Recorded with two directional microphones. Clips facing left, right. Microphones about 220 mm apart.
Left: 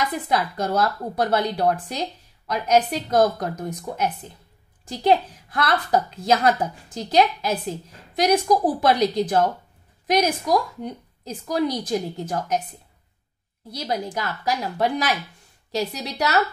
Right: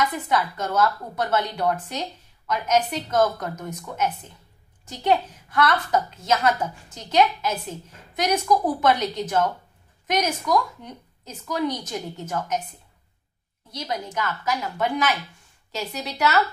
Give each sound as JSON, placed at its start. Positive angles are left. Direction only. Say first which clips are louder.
{"t": 0.3, "sound": "a woman's voice", "louder": "left 2 dB", "side_deg": 35}
{"t": 13.7, "sound": "a woman's voice", "louder": "left 3 dB", "side_deg": 35}